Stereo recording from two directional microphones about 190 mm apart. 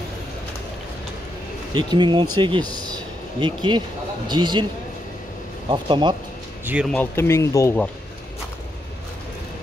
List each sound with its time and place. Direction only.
1.7 s speech: 25° right (ahead or behind)
5.7 s speech: 25° right (ahead or behind)
6.6 s speech: 10° right (ahead or behind)
6.9 s speech: 10° left (ahead or behind)